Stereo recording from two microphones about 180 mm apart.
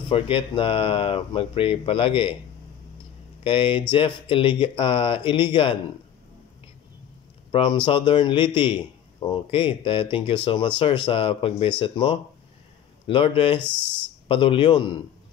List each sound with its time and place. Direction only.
0.1 s speech: 30° left (ahead or behind)
3.4 s a man's voice: 30° left (ahead or behind)
7.5 s a man's voice: 25° left (ahead or behind)